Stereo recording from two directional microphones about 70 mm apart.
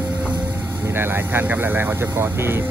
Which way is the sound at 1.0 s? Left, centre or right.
Right.